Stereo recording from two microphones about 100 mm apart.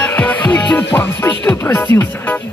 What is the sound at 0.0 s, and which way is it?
Music, 15° left (ahead or behind).